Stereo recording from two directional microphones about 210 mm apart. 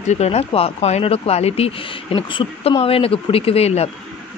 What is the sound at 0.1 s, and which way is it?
Speech, 30° left (ahead or behind).